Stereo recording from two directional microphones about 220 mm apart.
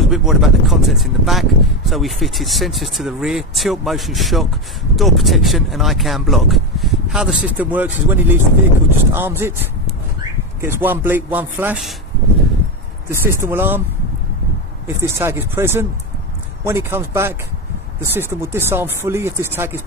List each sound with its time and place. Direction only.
0.0 s speech: centre (ahead or behind)
10.6 s speech: 10° right (ahead or behind)
13.1 s speech: 10° right (ahead or behind)
15.0 s speech: 10° right (ahead or behind)